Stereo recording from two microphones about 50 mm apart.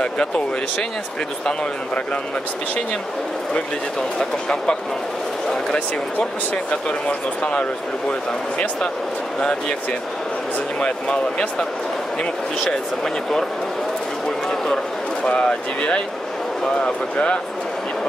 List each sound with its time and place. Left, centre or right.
4.2 s speech: centre
5.7 s speech: left
9.4 s speech: left
10.8 s speech: centre
15.2 s speech: left